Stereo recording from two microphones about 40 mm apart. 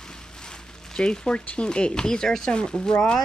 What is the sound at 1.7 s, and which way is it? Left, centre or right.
Speech, left.